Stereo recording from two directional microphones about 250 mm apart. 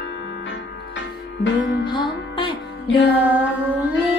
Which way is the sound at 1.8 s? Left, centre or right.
Centre.